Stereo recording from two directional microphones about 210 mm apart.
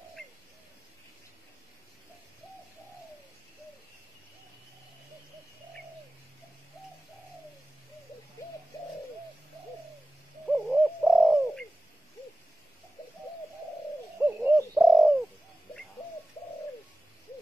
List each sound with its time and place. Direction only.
10.4 s bird: centre (ahead or behind)
14.2 s bird: 5° right (ahead or behind)